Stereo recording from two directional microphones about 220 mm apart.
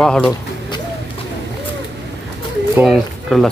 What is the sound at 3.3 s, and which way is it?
Speech, centre (ahead or behind).